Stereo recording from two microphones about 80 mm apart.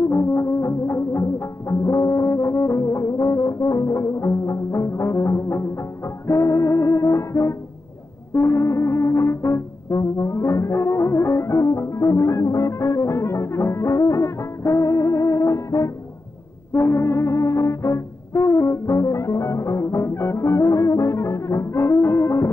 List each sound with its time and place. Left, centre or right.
0.1 s music: left
8.3 s brass instrument: left